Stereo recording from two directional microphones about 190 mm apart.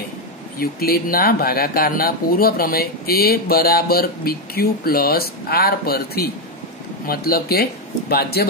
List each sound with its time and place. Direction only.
0.6 s speech: 50° left (ahead or behind)